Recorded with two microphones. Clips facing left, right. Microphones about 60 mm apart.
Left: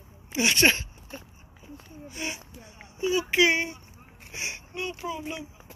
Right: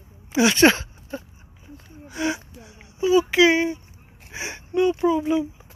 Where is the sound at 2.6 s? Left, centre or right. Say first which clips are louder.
Right 2 dB; right.